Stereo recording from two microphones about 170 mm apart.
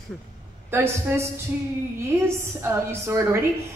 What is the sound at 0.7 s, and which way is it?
A woman's voice, 15° right (ahead or behind).